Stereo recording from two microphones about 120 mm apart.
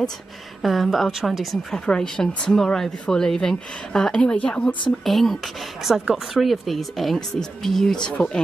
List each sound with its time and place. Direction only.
0.6 s a woman's voice: centre (ahead or behind)